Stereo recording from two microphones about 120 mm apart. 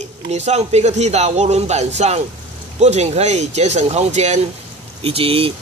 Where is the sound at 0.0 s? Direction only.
70° right (ahead or behind).